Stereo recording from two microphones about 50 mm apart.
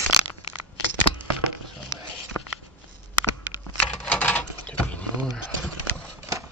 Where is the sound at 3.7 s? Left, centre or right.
Left.